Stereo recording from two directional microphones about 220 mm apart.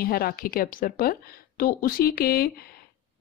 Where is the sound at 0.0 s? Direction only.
45° left (ahead or behind).